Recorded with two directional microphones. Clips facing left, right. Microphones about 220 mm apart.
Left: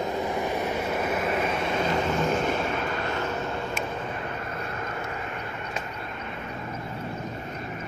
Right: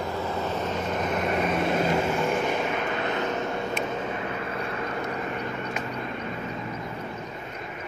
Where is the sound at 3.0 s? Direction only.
20° right (ahead or behind).